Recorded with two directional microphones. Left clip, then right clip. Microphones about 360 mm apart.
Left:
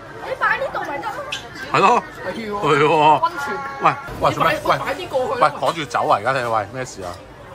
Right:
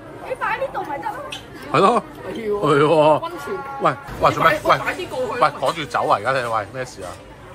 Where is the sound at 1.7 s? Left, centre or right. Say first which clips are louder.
Left 1 dB; centre.